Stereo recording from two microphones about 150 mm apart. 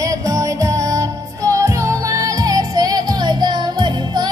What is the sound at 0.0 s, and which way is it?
Music, 20° right (ahead or behind).